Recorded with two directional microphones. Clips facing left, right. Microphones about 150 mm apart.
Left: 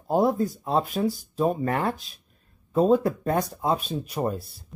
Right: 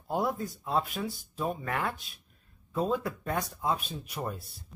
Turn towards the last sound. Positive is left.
turn(degrees=35)  # may be behind; listen again after turning